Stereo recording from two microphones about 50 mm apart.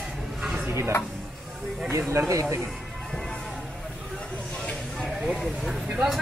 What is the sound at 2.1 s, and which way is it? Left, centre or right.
Speech, right.